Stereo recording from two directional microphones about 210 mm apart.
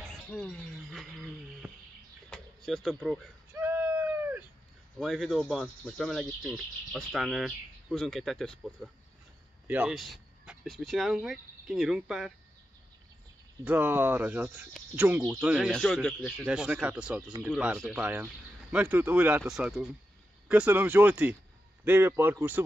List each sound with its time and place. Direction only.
0.1 s speech: 5° left (ahead or behind)
2.2 s vehicle: 5° left (ahead or behind)
3.5 s a sound: 10° right (ahead or behind)
5.0 s speech: centre (ahead or behind)
13.7 s speech: 10° right (ahead or behind)